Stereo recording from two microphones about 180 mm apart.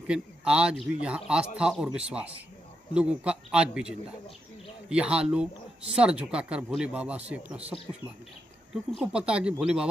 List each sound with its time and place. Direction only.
0.0 s a man's voice: 5° right (ahead or behind)